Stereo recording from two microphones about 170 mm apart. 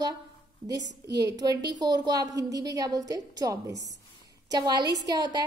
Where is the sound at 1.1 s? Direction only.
20° right (ahead or behind).